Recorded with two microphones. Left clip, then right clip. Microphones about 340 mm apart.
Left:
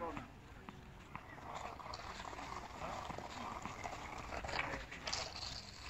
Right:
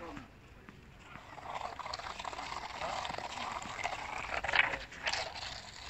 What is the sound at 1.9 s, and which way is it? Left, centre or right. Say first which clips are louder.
Water: right 7 dB; right.